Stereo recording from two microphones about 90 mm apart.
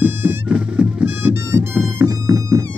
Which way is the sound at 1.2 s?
25° right (ahead or behind).